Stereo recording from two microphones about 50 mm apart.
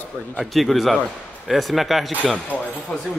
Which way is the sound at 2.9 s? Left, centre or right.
Centre.